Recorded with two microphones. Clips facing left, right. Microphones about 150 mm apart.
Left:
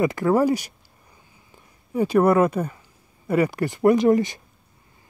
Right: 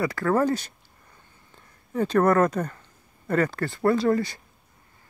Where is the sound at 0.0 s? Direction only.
15° left (ahead or behind).